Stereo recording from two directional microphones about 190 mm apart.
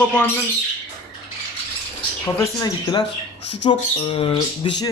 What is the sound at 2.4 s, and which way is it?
Speech, 20° left (ahead or behind).